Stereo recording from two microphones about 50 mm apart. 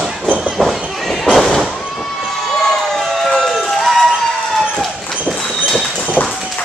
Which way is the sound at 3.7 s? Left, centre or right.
Centre.